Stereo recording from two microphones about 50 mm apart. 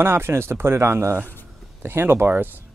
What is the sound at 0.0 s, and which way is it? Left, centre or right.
Speech, right.